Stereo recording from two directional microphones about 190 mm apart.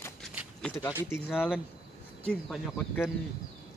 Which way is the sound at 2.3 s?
10° left (ahead or behind).